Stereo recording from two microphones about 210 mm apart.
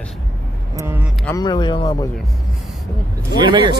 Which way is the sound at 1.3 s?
20° left (ahead or behind).